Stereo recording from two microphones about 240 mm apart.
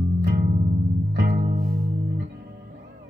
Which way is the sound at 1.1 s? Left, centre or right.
Right.